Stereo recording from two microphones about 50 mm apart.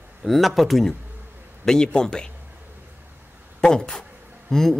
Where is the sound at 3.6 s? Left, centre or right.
Centre.